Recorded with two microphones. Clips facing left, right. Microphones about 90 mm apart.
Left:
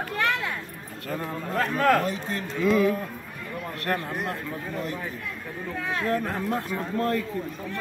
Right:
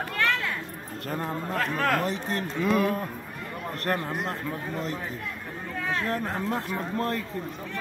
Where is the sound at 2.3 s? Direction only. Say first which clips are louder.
Left 3 dB; 45° right (ahead or behind).